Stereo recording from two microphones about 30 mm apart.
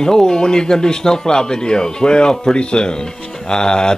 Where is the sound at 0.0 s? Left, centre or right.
Left.